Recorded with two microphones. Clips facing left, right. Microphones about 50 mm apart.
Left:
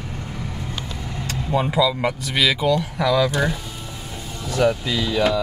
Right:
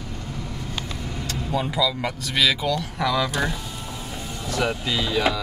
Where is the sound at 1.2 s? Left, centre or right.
Centre.